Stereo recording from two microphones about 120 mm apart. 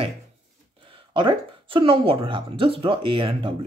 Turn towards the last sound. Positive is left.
turn(degrees=-45)  # may be behind; listen again after turning